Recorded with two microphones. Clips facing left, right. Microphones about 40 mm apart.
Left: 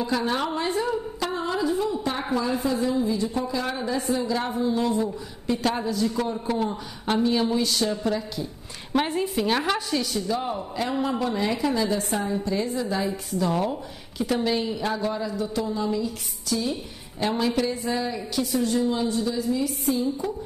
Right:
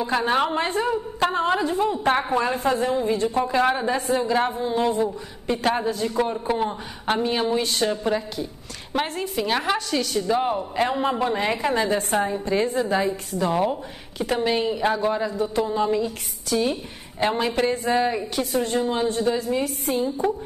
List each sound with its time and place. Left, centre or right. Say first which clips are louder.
0.0 s a woman's voice: right 4 dB; right
6.3 s a woman's voice: right 2 dB; centre
9.0 s a woman's voice: left 2 dB; centre
9.3 s a woman's voice: right 1 dB; centre
9.9 s a woman's voice: right 4 dB; right